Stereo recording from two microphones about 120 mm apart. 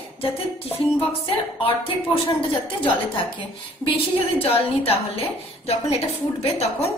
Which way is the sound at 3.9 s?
55° left (ahead or behind).